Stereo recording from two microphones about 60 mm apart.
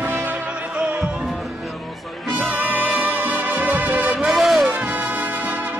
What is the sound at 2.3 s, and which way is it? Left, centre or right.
Music, right.